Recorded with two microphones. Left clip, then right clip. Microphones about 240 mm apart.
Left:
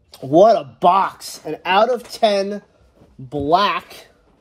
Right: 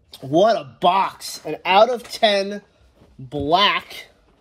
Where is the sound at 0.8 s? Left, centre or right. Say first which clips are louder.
Left 1 dB; centre.